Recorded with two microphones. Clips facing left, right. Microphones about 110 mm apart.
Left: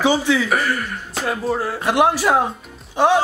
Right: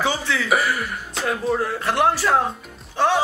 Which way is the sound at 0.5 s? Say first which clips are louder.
Even; 10° right (ahead or behind).